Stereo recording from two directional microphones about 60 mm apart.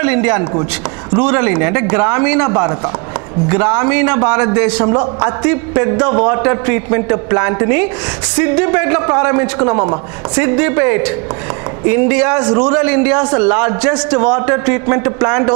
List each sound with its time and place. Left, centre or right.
0.0 s a man's voice: right